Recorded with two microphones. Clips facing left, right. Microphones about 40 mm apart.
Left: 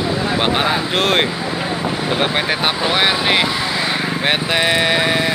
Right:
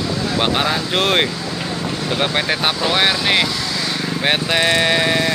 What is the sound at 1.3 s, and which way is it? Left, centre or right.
Vehicle, left.